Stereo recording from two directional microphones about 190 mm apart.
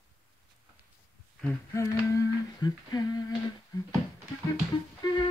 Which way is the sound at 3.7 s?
20° left (ahead or behind).